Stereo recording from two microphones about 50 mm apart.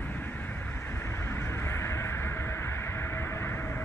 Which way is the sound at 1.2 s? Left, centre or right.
Left.